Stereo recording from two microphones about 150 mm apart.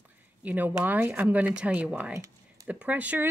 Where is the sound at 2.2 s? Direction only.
20° right (ahead or behind).